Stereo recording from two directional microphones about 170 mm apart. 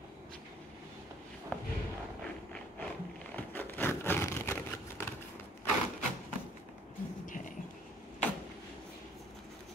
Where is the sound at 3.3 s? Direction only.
10° left (ahead or behind).